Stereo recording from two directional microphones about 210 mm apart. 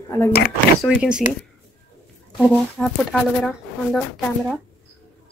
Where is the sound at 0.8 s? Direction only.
Centre (ahead or behind).